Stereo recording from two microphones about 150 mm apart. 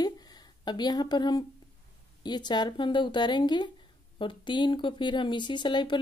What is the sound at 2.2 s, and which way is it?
Speech, 30° left (ahead or behind).